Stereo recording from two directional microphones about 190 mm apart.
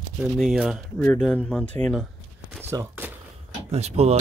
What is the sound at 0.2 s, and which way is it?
Speech, centre (ahead or behind).